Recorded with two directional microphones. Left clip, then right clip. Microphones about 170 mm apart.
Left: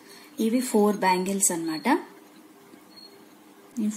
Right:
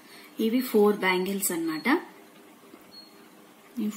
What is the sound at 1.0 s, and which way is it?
Speech, 50° left (ahead or behind).